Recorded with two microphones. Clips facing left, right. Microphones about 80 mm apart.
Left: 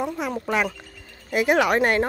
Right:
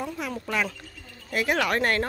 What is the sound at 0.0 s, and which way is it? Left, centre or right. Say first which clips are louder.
Speech: left 5 dB; left.